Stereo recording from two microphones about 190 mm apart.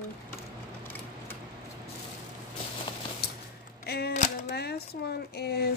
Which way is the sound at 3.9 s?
55° left (ahead or behind).